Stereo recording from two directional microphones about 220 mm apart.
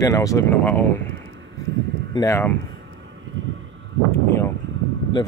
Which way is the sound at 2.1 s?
10° left (ahead or behind).